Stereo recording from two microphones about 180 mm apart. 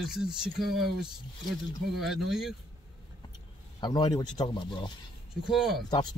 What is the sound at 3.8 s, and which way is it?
Speech, 20° left (ahead or behind).